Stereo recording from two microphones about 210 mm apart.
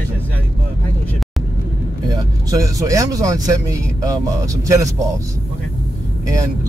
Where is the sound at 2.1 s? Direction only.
15° right (ahead or behind).